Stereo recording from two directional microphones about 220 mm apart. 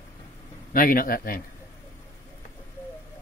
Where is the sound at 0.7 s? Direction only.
40° left (ahead or behind).